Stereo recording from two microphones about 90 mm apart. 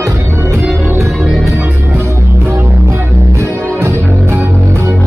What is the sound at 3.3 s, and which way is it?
Music, 30° right (ahead or behind).